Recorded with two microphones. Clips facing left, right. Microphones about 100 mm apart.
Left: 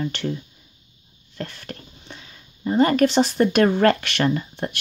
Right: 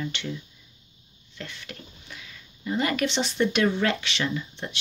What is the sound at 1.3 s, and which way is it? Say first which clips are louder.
Speech: left 6 dB; 45° left (ahead or behind).